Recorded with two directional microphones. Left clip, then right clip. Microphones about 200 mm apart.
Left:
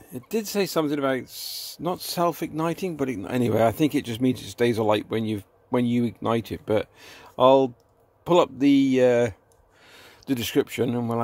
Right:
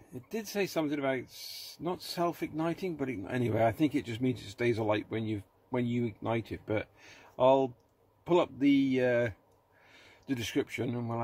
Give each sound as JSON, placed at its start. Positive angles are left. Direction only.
{"t": 0.1, "sound": "speech", "side_deg": 45}